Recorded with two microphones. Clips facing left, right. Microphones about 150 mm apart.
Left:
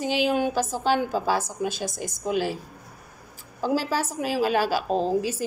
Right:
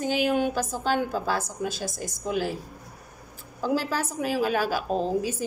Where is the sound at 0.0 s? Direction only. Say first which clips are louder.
Left 1 dB; 10° left (ahead or behind).